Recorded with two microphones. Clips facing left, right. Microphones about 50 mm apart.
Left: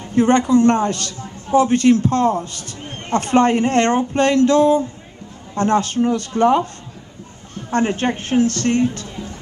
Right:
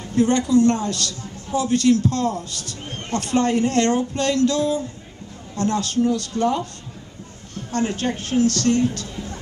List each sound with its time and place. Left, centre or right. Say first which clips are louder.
0.0 s a man's voice: left 4 dB; left